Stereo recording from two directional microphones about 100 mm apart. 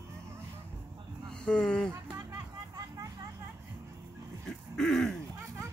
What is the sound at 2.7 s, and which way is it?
Vehicle, 35° right (ahead or behind).